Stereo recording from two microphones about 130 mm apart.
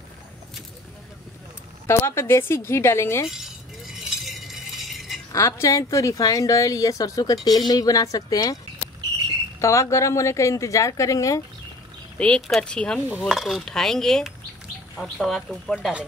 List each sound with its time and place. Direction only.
1.9 s a woman's voice: 20° left (ahead or behind)
3.3 s a sound: 5° right (ahead or behind)
5.3 s a woman's voice: 25° left (ahead or behind)
9.6 s a woman's voice: 25° left (ahead or behind)
12.2 s speech: 5° left (ahead or behind)